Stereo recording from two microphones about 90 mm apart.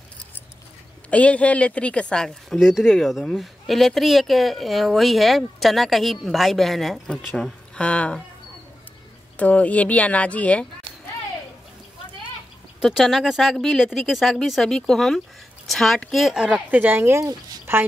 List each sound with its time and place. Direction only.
1.1 s speech: 15° left (ahead or behind)
9.4 s speech: 15° left (ahead or behind)
12.8 s a woman's voice: 5° right (ahead or behind); by 17.8 s 30° right (ahead or behind)